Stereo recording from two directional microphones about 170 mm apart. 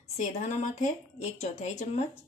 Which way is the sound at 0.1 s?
45° left (ahead or behind).